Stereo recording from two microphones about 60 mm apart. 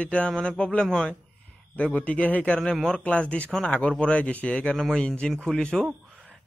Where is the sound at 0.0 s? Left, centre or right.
Left.